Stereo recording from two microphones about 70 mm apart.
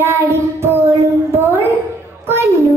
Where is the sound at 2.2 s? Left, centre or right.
Right.